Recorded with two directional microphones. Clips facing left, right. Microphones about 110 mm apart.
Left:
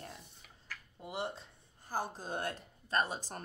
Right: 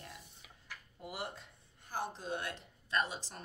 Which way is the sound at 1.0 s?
25° left (ahead or behind).